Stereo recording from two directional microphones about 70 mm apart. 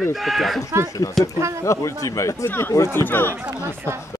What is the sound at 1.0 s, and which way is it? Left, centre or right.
Speech, left.